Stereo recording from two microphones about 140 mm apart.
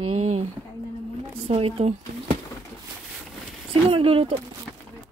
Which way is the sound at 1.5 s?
45° right (ahead or behind).